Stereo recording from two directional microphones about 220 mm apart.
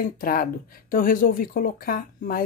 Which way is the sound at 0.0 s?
40° left (ahead or behind).